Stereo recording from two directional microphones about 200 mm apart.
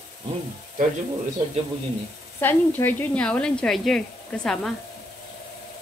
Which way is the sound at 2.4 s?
10° left (ahead or behind).